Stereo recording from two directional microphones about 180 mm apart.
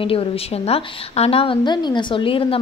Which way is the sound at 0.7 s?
35° left (ahead or behind).